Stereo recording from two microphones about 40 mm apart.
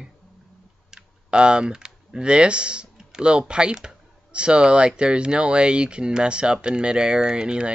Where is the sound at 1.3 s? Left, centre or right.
Right.